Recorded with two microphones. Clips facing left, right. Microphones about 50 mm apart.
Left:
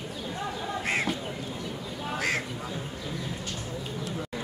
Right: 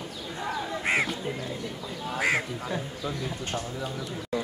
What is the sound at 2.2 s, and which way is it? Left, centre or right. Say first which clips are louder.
Speech: right 4 dB; centre.